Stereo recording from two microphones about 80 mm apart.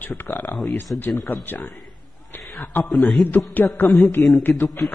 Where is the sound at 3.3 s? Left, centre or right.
Left.